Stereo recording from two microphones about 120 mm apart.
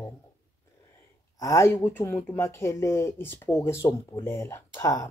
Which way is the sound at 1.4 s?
25° left (ahead or behind).